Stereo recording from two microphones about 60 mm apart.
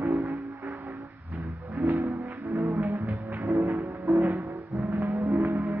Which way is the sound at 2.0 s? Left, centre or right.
Right.